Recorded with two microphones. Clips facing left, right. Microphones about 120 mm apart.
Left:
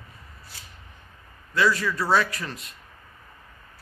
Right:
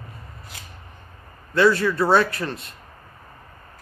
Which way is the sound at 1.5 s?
35° right (ahead or behind).